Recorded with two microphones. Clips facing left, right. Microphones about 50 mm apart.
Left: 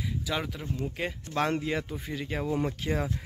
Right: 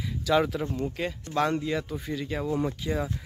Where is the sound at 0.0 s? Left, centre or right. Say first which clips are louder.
Right 7 dB; centre.